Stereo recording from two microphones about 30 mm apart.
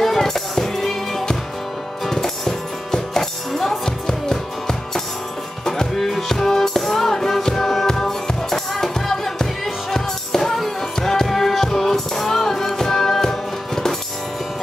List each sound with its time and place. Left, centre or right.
0.2 s music: centre
11.0 s music: centre
11.2 s music: centre